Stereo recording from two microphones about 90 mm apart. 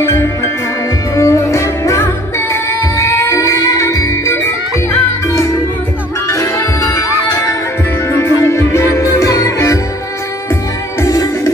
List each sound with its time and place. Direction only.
0.0 s music: 30° left (ahead or behind)
11.0 s music: 35° left (ahead or behind)